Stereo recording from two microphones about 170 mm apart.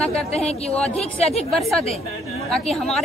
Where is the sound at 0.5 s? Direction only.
40° left (ahead or behind).